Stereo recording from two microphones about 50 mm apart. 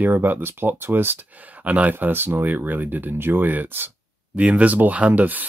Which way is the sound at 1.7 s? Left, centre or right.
Right.